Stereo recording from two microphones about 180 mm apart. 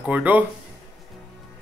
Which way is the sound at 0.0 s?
10° right (ahead or behind).